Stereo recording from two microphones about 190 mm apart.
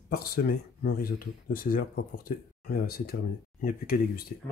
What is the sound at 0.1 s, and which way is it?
Speech, 55° left (ahead or behind).